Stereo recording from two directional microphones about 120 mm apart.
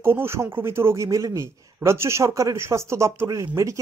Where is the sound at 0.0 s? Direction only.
20° right (ahead or behind).